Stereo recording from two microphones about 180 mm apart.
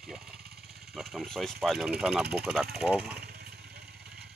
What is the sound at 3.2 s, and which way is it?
Vehicle, 60° right (ahead or behind).